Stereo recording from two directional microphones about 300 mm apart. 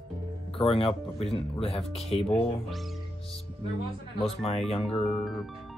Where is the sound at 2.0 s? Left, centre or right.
Centre.